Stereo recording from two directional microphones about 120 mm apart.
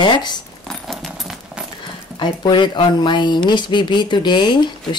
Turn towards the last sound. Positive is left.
turn(degrees=40)  # may be behind; listen again after turning